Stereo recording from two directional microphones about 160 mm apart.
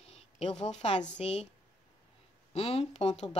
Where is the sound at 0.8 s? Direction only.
45° left (ahead or behind).